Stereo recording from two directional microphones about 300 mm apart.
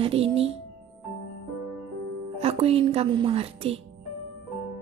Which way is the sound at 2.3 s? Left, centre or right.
Centre.